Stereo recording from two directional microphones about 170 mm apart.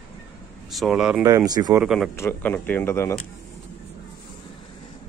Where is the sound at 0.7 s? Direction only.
Centre (ahead or behind).